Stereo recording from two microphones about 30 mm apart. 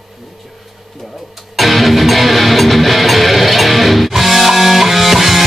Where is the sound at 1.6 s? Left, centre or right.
Centre.